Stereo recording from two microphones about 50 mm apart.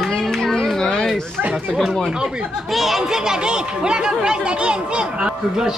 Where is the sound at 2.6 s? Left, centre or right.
Centre.